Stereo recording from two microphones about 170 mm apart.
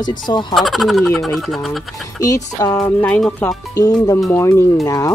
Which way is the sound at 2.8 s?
5° left (ahead or behind).